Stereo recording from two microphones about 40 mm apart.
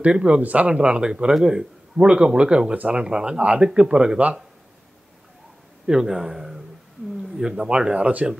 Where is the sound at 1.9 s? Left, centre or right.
Right.